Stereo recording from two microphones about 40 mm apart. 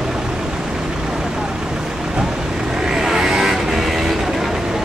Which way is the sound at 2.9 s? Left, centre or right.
Centre.